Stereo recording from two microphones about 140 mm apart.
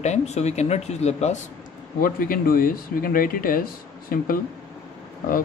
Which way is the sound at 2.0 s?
90° left.